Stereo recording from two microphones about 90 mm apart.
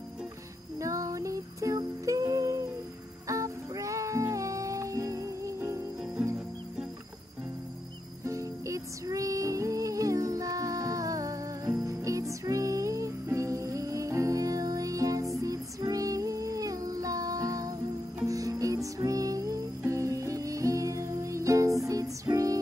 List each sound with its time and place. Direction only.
0.7 s music: 35° right (ahead or behind)
8.3 s music: 35° right (ahead or behind)